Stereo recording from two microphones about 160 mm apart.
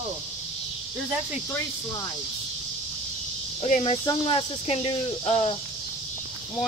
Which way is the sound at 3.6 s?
40° left (ahead or behind).